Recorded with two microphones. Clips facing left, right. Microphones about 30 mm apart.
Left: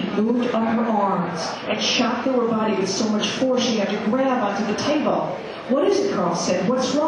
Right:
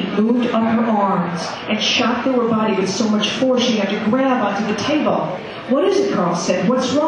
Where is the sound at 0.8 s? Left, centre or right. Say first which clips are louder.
Right 4 dB; centre.